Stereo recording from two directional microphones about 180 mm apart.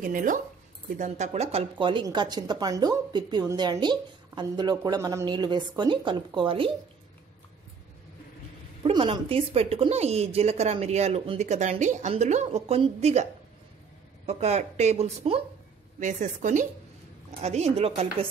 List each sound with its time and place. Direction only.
0.0 s a woman's voice: 50° right (ahead or behind); by 6.7 s 30° right (ahead or behind)
8.8 s speech: 30° right (ahead or behind)
16.0 s a woman's voice: 45° right (ahead or behind)